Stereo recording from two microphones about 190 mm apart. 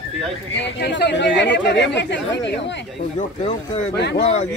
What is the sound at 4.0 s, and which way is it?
Speech, 65° left (ahead or behind).